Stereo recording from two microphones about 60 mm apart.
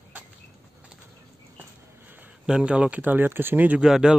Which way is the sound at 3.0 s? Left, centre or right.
Right.